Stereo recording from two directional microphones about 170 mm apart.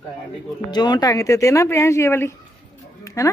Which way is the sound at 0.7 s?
25° left (ahead or behind).